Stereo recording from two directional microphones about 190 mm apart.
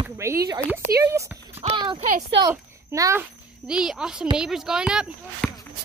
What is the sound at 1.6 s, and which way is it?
Speech, 30° right (ahead or behind).